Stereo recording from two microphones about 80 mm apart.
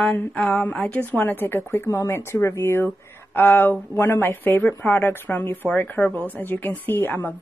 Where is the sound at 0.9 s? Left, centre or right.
Left.